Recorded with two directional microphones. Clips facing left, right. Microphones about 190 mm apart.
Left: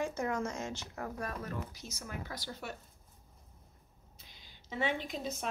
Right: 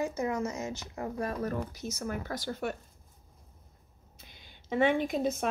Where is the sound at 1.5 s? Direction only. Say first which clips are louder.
Right 7 dB; 45° right (ahead or behind).